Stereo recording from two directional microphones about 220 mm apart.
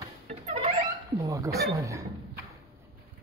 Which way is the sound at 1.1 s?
15° right (ahead or behind).